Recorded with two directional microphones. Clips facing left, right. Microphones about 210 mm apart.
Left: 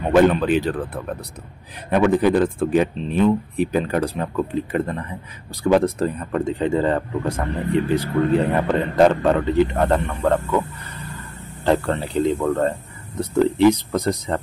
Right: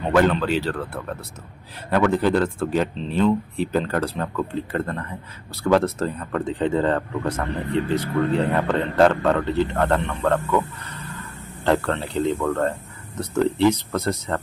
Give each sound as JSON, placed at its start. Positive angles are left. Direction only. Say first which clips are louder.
{"t": 0.3, "sound": "speech", "louder": "left 3 dB", "side_deg": 15}
{"t": 11.6, "sound": "speech", "louder": "left 2 dB", "side_deg": 15}